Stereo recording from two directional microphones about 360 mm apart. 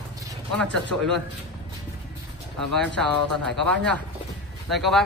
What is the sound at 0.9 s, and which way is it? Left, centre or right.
Speech, right.